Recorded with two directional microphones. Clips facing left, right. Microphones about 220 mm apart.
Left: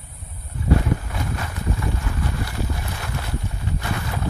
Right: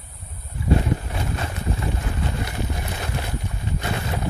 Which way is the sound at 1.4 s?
25° right (ahead or behind).